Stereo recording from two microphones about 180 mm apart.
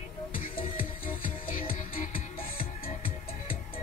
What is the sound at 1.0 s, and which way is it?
Music, 50° left (ahead or behind).